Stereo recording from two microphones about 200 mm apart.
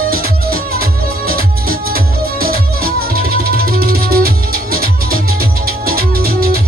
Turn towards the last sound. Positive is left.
turn(degrees=-50)  # may be behind; listen again after turning